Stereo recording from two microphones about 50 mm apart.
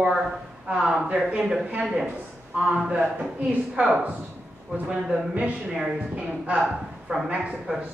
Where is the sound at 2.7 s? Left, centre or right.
Right.